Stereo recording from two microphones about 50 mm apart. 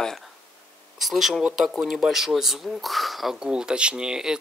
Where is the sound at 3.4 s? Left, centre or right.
Centre.